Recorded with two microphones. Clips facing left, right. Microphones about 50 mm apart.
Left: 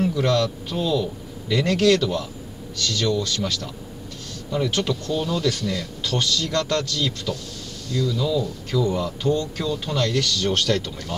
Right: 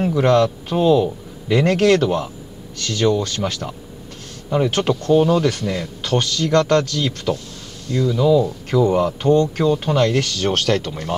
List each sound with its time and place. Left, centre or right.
0.0 s a man's voice: right